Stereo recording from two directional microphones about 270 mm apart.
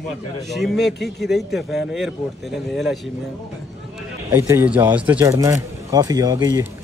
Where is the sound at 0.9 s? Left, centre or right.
Left.